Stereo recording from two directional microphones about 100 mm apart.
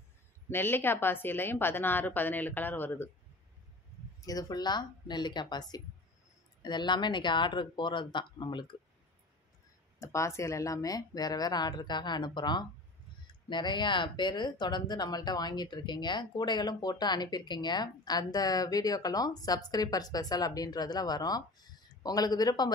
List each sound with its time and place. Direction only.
0.5 s a woman's voice: 20° left (ahead or behind)
4.2 s speech: 40° left (ahead or behind)
9.9 s speech: 30° left (ahead or behind)